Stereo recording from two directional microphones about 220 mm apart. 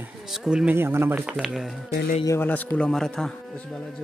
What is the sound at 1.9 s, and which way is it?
Speech, 35° left (ahead or behind).